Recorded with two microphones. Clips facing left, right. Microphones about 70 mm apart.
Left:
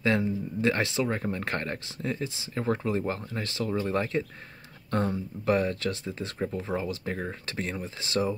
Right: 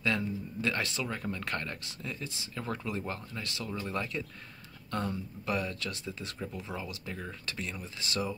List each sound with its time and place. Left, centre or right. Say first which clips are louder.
0.0 s speech: left 6 dB; left
7.7 s speech: left 8 dB; left